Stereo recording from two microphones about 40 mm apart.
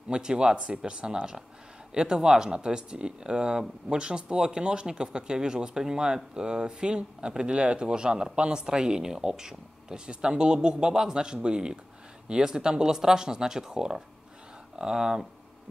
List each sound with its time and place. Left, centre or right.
0.1 s speech: right